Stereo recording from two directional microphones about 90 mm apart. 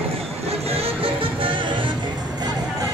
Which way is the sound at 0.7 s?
90° right.